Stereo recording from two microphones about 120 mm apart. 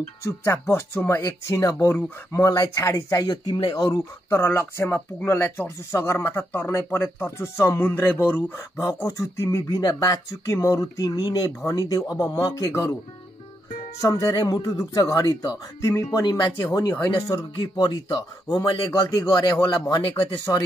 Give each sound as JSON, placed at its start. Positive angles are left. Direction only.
{"t": 0.2, "sound": "speech", "side_deg": 20}
{"t": 14.0, "sound": "speech", "side_deg": 25}
{"t": 19.7, "sound": "speech", "side_deg": 35}